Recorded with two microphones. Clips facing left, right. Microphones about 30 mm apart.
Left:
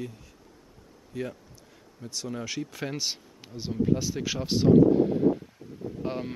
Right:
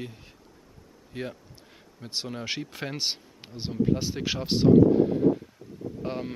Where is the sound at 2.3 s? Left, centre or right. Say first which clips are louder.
Left 3 dB; right.